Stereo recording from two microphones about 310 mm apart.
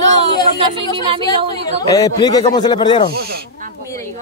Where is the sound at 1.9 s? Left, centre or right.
Centre.